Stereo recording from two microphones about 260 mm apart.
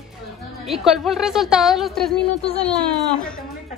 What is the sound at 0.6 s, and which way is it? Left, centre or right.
Speech, centre.